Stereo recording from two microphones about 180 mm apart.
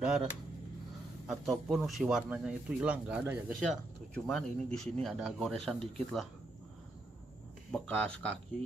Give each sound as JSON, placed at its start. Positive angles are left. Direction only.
{"t": 0.0, "sound": "speech", "side_deg": -5}
{"t": 4.1, "sound": "speech", "side_deg": 5}
{"t": 7.7, "sound": "speech", "side_deg": 5}